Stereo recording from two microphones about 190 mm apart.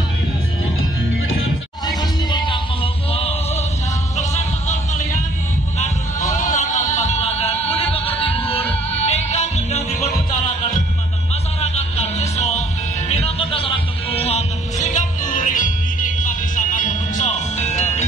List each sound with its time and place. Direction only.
1.9 s music: 25° left (ahead or behind)
4.2 s a sound: 40° left (ahead or behind)
6.3 s music: 40° left (ahead or behind)
11.6 s music: 35° left (ahead or behind)